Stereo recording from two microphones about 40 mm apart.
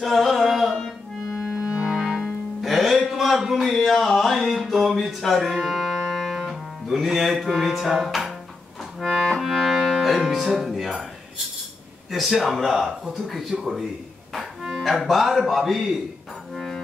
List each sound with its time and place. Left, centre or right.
0.0 s music: centre
1.3 s organ: centre
2.6 s music: centre
12.1 s speech: centre
16.5 s music: centre